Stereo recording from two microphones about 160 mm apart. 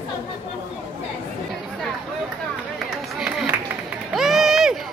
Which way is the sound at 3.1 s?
5° right (ahead or behind).